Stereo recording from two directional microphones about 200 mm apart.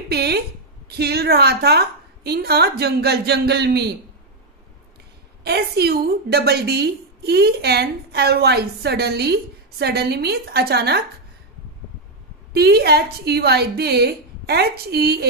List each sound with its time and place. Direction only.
0.1 s a woman's voice: 55° right (ahead or behind)
5.4 s a woman's voice: 55° right (ahead or behind)
12.5 s a woman's voice: 55° right (ahead or behind)